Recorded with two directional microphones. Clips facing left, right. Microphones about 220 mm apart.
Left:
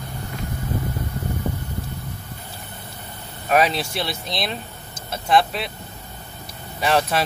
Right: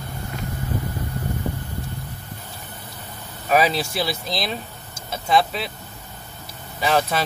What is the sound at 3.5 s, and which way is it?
Speech, centre (ahead or behind).